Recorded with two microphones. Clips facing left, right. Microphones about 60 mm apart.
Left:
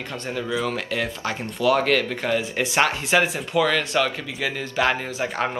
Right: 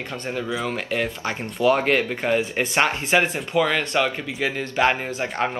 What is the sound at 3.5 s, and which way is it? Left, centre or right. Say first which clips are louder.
Speech: even; centre.